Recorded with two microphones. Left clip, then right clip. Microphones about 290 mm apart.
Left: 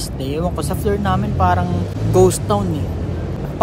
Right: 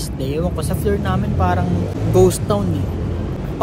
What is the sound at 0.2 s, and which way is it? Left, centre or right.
Speech, centre.